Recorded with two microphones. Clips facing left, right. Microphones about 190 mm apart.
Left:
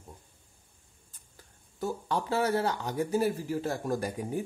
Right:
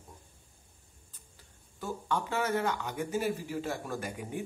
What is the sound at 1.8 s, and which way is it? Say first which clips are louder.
Speech: left 2 dB; 35° left (ahead or behind).